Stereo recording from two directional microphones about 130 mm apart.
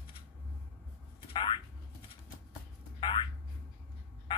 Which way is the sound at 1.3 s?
35° left (ahead or behind).